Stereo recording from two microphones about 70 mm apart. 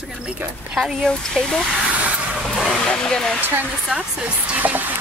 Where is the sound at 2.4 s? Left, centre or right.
Centre.